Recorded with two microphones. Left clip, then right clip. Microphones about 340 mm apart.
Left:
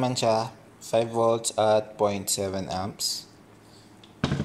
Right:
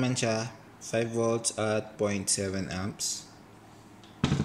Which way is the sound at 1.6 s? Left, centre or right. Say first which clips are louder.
Left 7 dB; centre.